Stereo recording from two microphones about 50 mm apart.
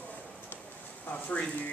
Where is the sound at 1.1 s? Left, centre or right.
Left.